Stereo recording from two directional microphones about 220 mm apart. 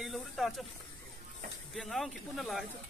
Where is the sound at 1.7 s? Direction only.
Centre (ahead or behind).